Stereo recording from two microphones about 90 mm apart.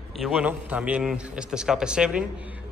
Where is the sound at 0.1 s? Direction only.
5° right (ahead or behind).